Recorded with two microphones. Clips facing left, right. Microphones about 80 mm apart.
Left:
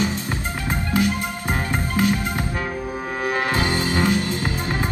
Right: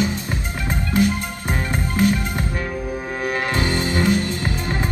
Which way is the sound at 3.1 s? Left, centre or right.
Left.